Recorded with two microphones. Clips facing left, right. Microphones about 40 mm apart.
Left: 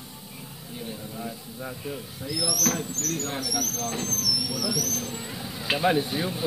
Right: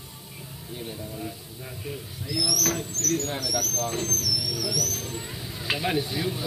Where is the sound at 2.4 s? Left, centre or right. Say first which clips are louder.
Left 1 dB; left.